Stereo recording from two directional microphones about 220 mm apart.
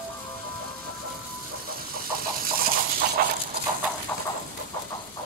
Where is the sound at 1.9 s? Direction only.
40° right (ahead or behind).